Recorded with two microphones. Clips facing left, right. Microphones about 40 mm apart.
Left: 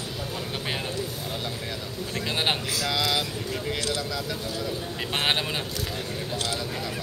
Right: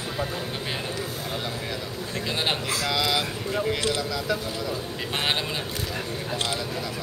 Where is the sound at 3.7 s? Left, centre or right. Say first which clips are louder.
Right 3 dB; right.